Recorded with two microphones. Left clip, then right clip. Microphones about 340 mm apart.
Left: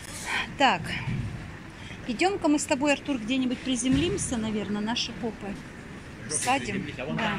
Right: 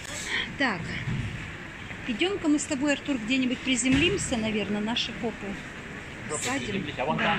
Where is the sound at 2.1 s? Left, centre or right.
Centre.